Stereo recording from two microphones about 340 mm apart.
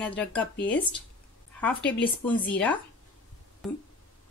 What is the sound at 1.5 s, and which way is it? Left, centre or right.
Speech, centre.